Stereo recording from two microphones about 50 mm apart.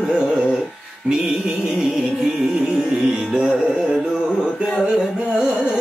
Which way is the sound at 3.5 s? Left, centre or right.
Centre.